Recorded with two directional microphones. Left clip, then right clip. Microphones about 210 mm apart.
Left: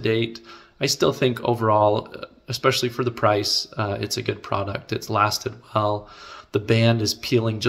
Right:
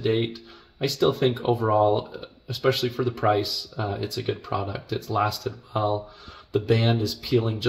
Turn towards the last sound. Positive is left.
turn(degrees=15)  # may be behind; listen again after turning